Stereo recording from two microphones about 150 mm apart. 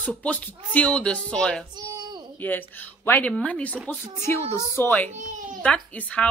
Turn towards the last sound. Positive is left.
turn(degrees=10)  # may be behind; listen again after turning